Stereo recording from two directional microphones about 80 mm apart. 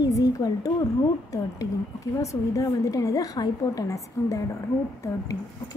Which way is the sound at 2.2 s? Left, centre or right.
Left.